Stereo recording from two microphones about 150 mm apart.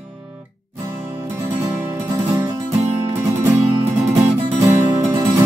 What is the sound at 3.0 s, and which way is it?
Music, 20° right (ahead or behind).